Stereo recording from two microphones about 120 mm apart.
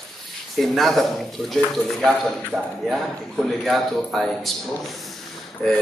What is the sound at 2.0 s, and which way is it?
Speech, centre (ahead or behind).